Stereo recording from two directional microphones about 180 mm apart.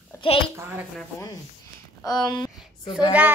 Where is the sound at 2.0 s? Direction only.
20° left (ahead or behind).